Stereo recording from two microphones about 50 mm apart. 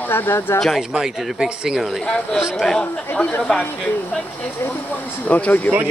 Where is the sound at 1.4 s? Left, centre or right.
Centre.